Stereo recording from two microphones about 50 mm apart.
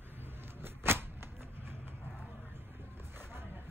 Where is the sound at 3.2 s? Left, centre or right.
Right.